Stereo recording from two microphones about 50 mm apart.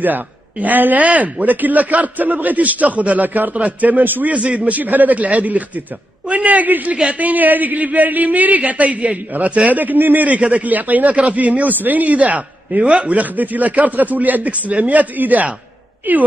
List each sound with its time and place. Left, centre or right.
0.0 s speech: right
4.3 s a man's voice: right
10.2 s speech: right